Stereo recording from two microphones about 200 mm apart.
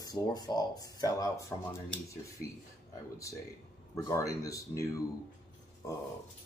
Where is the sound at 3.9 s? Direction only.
15° left (ahead or behind).